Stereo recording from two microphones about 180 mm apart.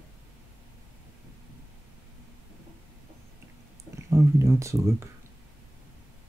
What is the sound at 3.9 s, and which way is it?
Speech, 15° right (ahead or behind).